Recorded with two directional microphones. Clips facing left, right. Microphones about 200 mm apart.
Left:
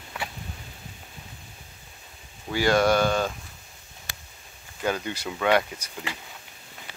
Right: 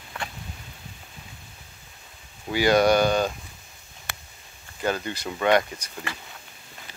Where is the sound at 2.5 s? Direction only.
Centre (ahead or behind).